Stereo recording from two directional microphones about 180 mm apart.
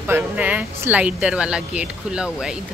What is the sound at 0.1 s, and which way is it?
A woman's voice, 10° right (ahead or behind).